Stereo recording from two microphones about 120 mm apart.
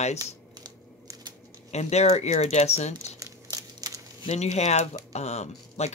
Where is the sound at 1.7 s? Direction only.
70° left (ahead or behind).